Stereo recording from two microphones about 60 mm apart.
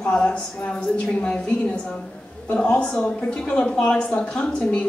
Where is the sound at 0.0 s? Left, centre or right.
Centre.